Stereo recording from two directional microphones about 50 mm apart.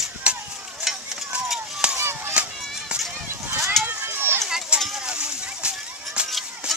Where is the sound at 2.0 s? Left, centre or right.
Right.